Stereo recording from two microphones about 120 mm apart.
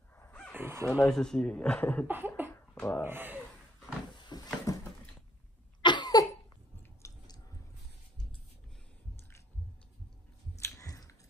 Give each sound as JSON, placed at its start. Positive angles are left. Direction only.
{"t": 0.5, "sound": "speech", "side_deg": -20}
{"t": 1.0, "sound": "speech", "side_deg": 5}
{"t": 2.0, "sound": "cough", "side_deg": -15}
{"t": 2.7, "sound": "a sound", "side_deg": 10}
{"t": 3.0, "sound": "cough", "side_deg": -15}
{"t": 4.1, "sound": "a sound", "side_deg": 35}
{"t": 5.8, "sound": "cough", "side_deg": 40}
{"t": 7.0, "sound": "chewing", "side_deg": 25}
{"t": 10.6, "sound": "chewing", "side_deg": 30}